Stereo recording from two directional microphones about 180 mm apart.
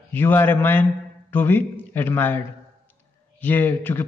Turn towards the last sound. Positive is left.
turn(degrees=10)  # may be behind; listen again after turning